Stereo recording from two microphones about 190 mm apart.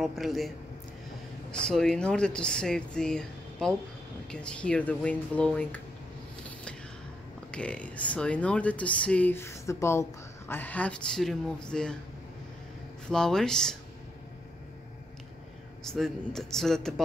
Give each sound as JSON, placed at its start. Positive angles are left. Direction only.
{"t": 0.0, "sound": "speech", "side_deg": 0}
{"t": 1.5, "sound": "speech", "side_deg": 5}
{"t": 7.5, "sound": "speech", "side_deg": 5}
{"t": 13.1, "sound": "speech", "side_deg": 5}
{"t": 15.8, "sound": "speech", "side_deg": 0}